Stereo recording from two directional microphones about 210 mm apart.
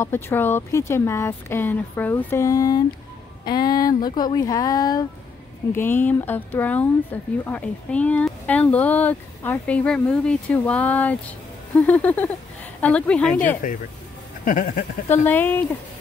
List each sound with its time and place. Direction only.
0.0 s a woman's voice: 10° left (ahead or behind)
13.6 s a sound: 40° left (ahead or behind)
15.2 s speech: 10° left (ahead or behind)